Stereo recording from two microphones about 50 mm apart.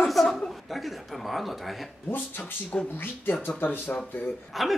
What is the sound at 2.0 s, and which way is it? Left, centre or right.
Speech, left.